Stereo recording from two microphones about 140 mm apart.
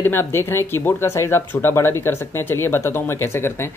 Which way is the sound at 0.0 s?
15° left (ahead or behind).